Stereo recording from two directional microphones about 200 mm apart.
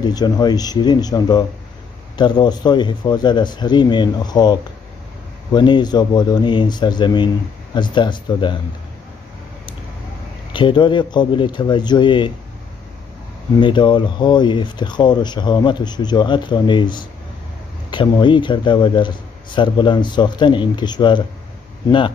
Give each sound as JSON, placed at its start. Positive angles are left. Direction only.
{"t": 0.0, "sound": "speech", "side_deg": 20}
{"t": 10.5, "sound": "speech", "side_deg": 25}
{"t": 13.6, "sound": "speech", "side_deg": 25}